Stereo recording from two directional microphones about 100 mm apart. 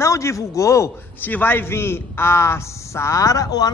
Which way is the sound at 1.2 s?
20° left (ahead or behind).